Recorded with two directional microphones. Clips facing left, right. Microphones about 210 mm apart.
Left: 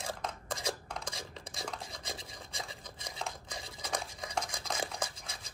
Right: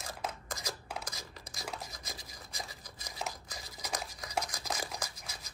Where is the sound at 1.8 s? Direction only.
30° left (ahead or behind).